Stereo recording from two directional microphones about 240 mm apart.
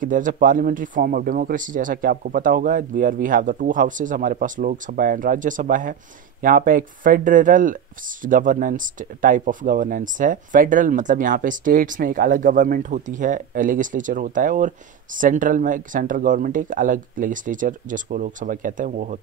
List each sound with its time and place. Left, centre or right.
0.0 s speech: right